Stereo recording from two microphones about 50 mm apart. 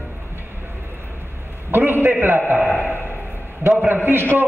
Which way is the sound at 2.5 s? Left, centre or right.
Centre.